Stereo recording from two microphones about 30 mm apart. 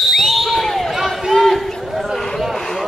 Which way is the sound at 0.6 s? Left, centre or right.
Centre.